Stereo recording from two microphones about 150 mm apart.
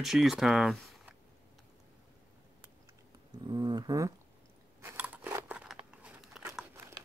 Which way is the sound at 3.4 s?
30° right (ahead or behind).